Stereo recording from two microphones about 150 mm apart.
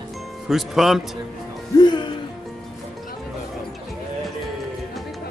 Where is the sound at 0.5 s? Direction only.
Centre (ahead or behind).